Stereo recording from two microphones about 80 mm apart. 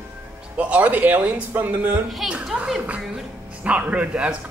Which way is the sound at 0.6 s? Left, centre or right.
Centre.